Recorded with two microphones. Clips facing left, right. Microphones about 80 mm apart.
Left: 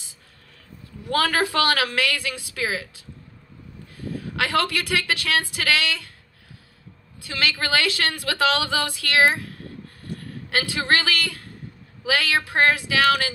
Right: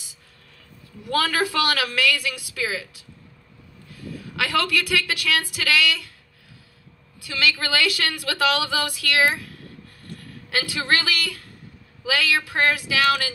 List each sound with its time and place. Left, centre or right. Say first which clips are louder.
1.0 s a woman's voice: left 1 dB; left
3.9 s speech: left 4 dB; left
7.2 s a woman's voice: right 1 dB; left